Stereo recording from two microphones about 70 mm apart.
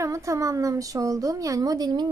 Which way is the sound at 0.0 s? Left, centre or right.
Right.